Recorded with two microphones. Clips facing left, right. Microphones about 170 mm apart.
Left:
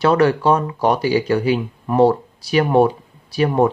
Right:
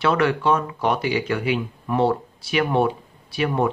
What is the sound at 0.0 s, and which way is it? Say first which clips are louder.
A man's voice: left 5 dB; 40° left (ahead or behind).